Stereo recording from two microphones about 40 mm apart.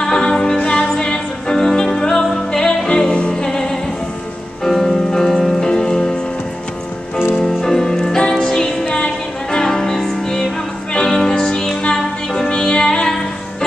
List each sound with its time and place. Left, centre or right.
0.0 s music: centre
5.6 s music: centre
7.4 s music: centre